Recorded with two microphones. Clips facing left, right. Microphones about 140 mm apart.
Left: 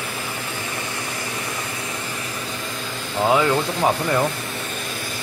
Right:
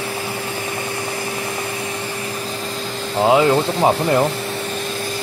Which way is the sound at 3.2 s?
25° right (ahead or behind).